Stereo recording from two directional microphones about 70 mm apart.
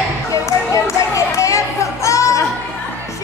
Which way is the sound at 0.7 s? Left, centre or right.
Left.